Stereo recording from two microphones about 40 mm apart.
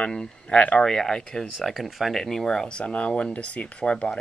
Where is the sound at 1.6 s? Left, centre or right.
Centre.